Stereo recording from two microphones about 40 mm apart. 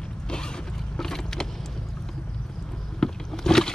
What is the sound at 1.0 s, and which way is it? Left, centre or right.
Vehicle, centre.